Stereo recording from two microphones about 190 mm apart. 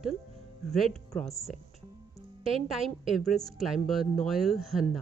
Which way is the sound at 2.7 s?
Centre (ahead or behind).